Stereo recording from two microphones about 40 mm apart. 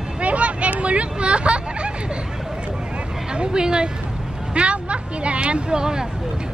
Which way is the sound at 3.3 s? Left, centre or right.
Right.